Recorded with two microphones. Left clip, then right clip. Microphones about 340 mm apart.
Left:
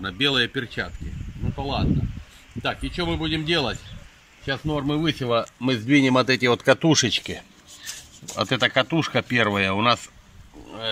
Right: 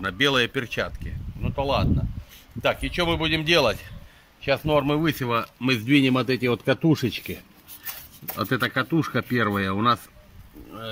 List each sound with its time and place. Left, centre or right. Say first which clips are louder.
0.0 s speech: even; centre
8.4 s speech: left 4 dB; centre